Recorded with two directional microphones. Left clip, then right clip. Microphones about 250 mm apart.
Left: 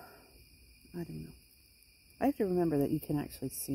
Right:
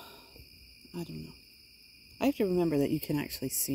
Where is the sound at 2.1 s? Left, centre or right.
Right.